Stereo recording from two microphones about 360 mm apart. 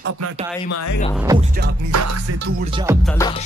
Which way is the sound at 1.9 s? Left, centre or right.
Right.